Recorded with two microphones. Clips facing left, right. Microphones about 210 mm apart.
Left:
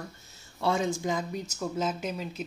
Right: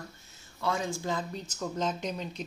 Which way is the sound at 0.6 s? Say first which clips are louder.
Left 4 dB; 25° left (ahead or behind).